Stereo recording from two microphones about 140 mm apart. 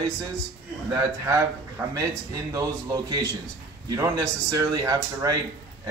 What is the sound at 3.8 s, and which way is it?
Speech, 20° right (ahead or behind).